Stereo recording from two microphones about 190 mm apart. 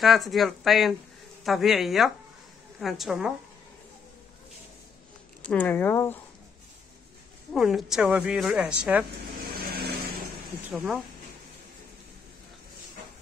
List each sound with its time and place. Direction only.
0.0 s a woman's voice: centre (ahead or behind)
5.4 s speech: 10° left (ahead or behind)
7.5 s a woman's voice: centre (ahead or behind)
9.5 s vehicle: 50° right (ahead or behind)
10.7 s speech: 5° right (ahead or behind)